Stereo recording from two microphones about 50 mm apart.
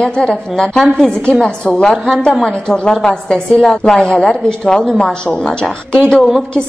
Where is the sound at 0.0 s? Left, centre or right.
Centre.